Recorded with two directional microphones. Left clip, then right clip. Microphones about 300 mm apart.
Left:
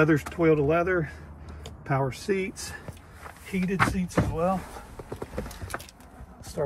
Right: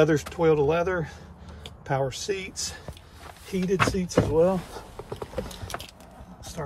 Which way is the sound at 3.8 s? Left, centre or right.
Right.